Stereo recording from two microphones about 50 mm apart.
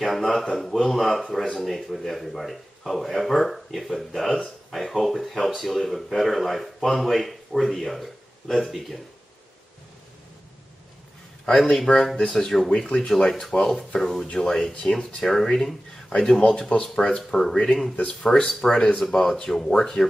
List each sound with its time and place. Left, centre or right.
0.0 s speech: centre
11.7 s speech: centre
17.9 s speech: left
18.5 s speech: centre